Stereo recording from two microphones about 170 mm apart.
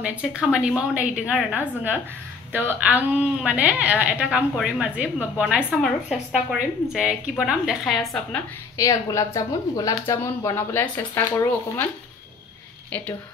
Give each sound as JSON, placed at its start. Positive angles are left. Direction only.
{"t": 0.0, "sound": "a woman's voice", "side_deg": -5}
{"t": 8.7, "sound": "speech", "side_deg": 20}
{"t": 12.9, "sound": "speech", "side_deg": 10}